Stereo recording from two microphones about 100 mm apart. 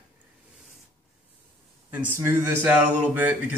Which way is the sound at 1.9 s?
20° right (ahead or behind).